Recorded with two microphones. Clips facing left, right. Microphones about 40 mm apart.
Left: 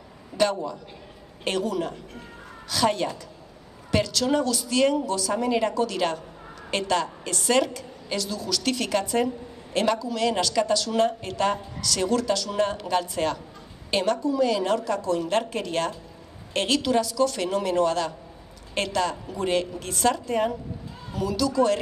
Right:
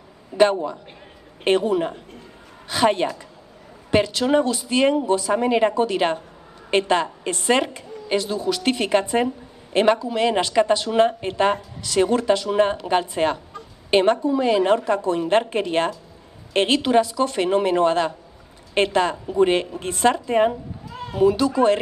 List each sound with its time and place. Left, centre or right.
0.4 s a woman's voice: right